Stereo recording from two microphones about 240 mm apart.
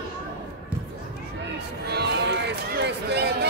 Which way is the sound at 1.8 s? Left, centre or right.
Right.